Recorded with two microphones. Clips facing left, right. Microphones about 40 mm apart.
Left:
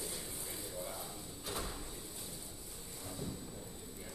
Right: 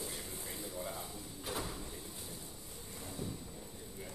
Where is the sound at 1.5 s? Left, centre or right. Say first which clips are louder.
Right 2 dB; centre.